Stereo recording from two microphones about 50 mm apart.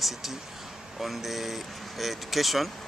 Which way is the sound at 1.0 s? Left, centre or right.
Centre.